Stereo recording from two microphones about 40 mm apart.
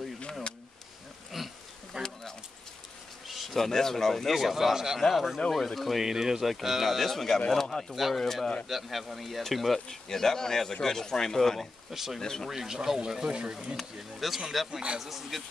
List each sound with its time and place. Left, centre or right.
0.2 s a sound: left
1.3 s bee: centre
1.9 s a sound: centre
3.5 s speech: centre
4.3 s speech: centre
6.0 s speech: centre
7.9 s speech: centre
11.9 s speech: centre
12.2 s speech: centre
12.4 s speech: centre
13.7 s speech: centre